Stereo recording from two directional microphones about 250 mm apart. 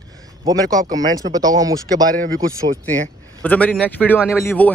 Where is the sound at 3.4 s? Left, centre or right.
Centre.